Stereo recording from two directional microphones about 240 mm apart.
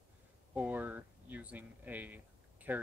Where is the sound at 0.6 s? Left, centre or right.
Centre.